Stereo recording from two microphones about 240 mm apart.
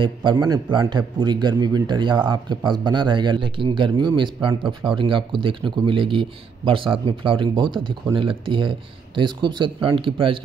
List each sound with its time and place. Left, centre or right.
0.0 s speech: centre